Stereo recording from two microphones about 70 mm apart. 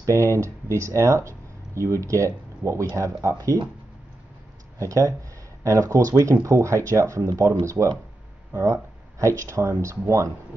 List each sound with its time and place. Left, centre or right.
0.0 s speech: right
4.7 s speech: right
9.2 s speech: right